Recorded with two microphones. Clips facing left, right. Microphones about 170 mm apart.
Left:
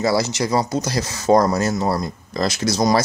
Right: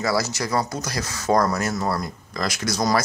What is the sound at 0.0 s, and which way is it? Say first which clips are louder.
Speech: left 4 dB; 25° left (ahead or behind).